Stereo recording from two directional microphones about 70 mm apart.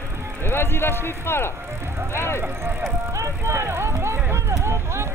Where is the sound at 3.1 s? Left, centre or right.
Right.